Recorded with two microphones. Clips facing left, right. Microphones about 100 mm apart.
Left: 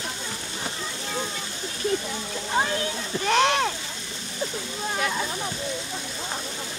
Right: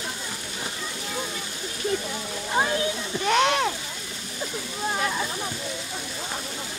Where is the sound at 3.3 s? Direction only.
35° left (ahead or behind).